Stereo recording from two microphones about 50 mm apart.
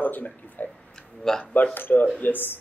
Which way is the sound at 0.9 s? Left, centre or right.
Centre.